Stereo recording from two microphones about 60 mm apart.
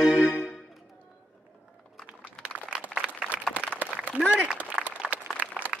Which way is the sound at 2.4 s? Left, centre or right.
Centre.